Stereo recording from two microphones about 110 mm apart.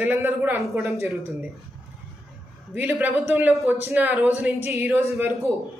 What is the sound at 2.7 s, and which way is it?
A man's voice, 15° right (ahead or behind).